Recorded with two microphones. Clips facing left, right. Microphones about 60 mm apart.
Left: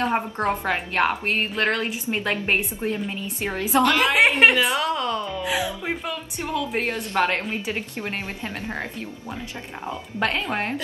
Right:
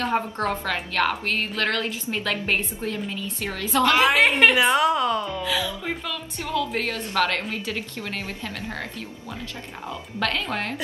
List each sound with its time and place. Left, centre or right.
0.0 s a woman's voice: left
3.8 s a woman's voice: centre
4.2 s a woman's voice: centre
4.6 s a woman's voice: centre
5.4 s a woman's voice: left
9.8 s a woman's voice: left